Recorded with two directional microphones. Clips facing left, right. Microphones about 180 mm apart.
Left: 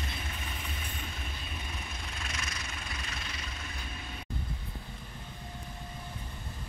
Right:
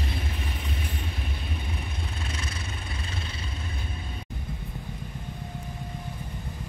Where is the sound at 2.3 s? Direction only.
30° right (ahead or behind).